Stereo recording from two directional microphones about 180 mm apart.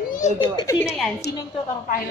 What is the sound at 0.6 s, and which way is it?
Speech, 15° left (ahead or behind).